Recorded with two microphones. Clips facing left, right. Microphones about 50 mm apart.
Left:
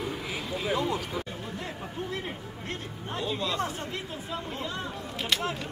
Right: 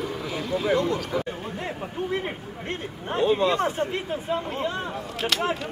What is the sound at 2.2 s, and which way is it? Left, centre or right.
Speech, right.